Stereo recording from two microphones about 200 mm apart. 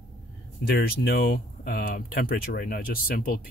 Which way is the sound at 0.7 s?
50° left (ahead or behind).